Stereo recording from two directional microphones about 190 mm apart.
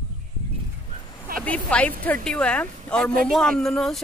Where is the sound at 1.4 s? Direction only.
5° left (ahead or behind).